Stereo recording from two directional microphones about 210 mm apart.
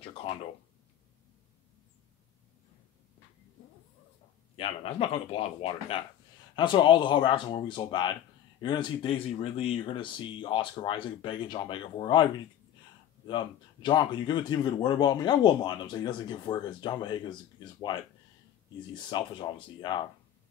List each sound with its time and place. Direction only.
0.0 s speech: 25° left (ahead or behind)
4.6 s speech: 25° left (ahead or behind)
13.3 s speech: 20° left (ahead or behind)
19.0 s speech: 20° left (ahead or behind)